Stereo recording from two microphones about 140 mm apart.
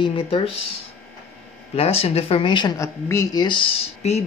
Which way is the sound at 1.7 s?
45° left (ahead or behind).